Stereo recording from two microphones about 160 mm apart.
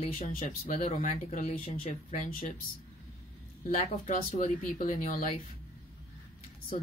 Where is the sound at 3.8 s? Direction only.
45° left (ahead or behind).